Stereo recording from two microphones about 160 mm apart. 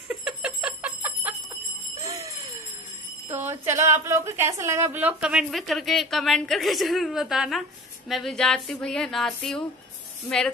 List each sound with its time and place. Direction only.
0.1 s alarm clock: 5° right (ahead or behind)
2.0 s jingle bell: 20° right (ahead or behind)
3.3 s a woman's voice: 15° right (ahead or behind); by 9.6 s centre (ahead or behind)